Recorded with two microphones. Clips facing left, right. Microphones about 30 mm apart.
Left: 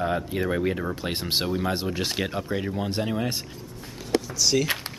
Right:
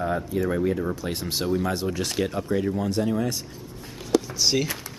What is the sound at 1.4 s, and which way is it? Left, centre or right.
Speech, left.